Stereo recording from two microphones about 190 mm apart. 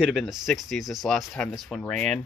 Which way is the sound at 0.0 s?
Centre (ahead or behind).